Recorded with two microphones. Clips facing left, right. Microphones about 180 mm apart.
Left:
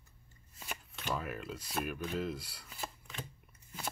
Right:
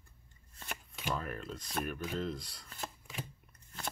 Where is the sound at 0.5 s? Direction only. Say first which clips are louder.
Even; 5° left (ahead or behind).